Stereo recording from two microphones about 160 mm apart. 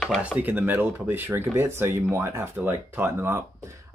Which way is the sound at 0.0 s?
Centre (ahead or behind).